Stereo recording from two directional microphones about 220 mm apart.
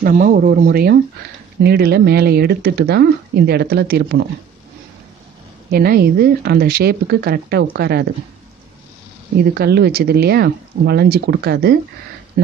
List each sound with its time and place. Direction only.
0.0 s speech: 35° right (ahead or behind)
5.7 s speech: 45° right (ahead or behind)
9.4 s speech: 45° right (ahead or behind)